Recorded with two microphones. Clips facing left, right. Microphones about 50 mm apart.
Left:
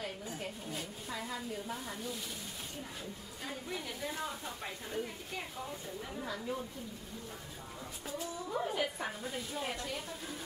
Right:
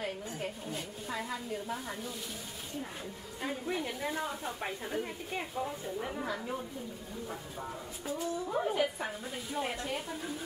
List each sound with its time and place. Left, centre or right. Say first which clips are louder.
0.3 s a sound: right 3 dB; centre
1.0 s speech: right 4 dB; centre
3.4 s a woman's voice: right 6 dB; right
4.9 s a woman's voice: right 1 dB; right
6.2 s a woman's voice: right 2 dB; centre
8.5 s speech: right 3 dB; centre